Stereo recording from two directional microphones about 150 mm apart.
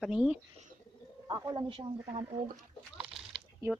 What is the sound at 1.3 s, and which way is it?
Speech, 25° right (ahead or behind).